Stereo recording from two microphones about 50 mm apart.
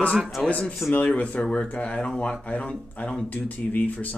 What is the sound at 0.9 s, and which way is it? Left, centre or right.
Speech, left.